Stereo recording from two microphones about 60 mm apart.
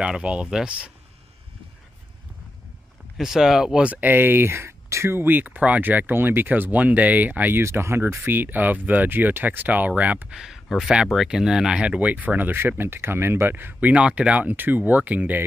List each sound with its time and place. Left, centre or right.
0.0 s speech: centre
3.2 s speech: centre; by 5.3 s right
5.3 s speech: right
7.6 s speech: right
10.3 s speech: centre; by 15.4 s right